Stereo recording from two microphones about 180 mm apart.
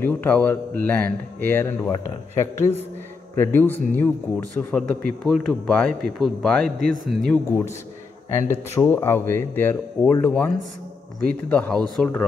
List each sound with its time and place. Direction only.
0.0 s a man's voice: 10° left (ahead or behind)
8.3 s a man's voice: 15° left (ahead or behind)